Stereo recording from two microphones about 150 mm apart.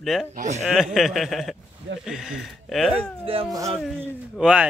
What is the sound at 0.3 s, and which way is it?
Speech, 55° right (ahead or behind).